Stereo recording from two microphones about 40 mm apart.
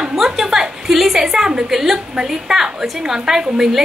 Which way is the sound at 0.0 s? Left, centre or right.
Centre.